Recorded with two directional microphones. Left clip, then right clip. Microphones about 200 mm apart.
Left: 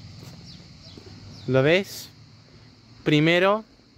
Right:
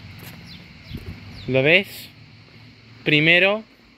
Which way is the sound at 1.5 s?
25° left (ahead or behind).